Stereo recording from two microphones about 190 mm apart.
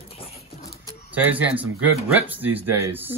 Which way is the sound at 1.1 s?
10° right (ahead or behind).